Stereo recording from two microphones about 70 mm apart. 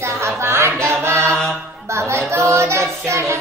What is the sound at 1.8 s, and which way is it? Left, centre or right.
Child singing, right.